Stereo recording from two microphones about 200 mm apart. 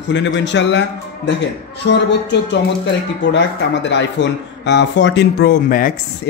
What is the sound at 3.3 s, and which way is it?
Speech, 60° left (ahead or behind).